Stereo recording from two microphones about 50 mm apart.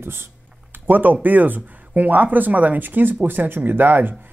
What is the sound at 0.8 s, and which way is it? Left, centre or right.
Speech, right.